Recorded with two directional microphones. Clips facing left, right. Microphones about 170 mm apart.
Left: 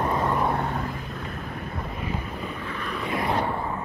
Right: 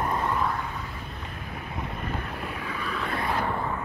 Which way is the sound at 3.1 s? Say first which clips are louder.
Left 4 dB; 25° left (ahead or behind).